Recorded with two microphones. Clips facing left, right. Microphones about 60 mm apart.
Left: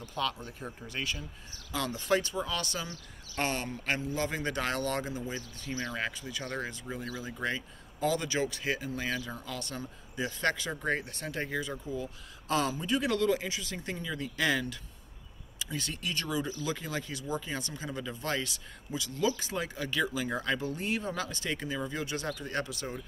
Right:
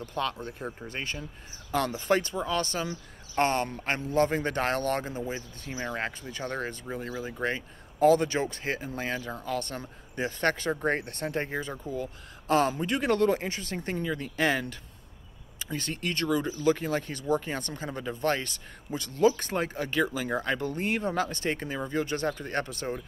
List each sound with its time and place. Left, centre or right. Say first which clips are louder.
0.0 s speech: right 3 dB; right
1.7 s speech: right 6 dB; right
2.0 s speech: right 3 dB; right
5.7 s speech: right 2 dB; centre
5.9 s speech: right 2 dB; right
20.6 s speech: right 4 dB; right